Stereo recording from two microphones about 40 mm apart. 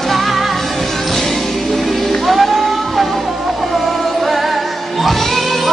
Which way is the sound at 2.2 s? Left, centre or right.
Centre.